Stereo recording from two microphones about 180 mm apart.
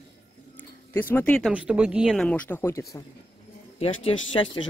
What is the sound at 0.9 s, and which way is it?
Speech, 10° left (ahead or behind).